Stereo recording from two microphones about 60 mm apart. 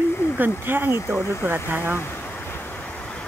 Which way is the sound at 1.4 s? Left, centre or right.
Right.